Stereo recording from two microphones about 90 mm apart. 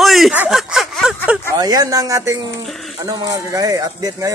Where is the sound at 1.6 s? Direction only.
45° right (ahead or behind).